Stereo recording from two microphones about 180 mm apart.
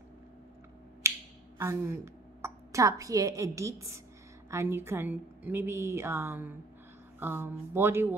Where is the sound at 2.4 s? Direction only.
15° right (ahead or behind).